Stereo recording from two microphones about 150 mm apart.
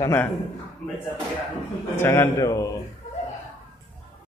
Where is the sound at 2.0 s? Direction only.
15° left (ahead or behind).